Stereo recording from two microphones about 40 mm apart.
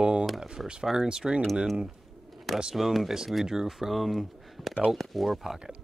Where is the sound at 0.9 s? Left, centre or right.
Centre.